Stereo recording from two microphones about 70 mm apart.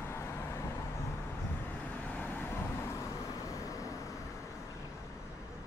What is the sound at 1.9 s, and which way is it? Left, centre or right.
Vehicle, left.